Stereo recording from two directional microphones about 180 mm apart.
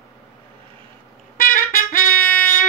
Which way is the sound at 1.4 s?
50° left (ahead or behind).